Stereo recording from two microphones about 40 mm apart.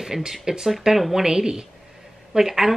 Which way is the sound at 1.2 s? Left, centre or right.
Centre.